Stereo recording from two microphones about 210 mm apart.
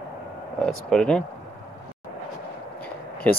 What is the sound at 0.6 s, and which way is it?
Speech, 5° left (ahead or behind).